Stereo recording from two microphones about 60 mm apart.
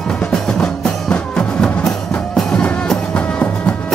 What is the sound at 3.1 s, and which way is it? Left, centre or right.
Music, left.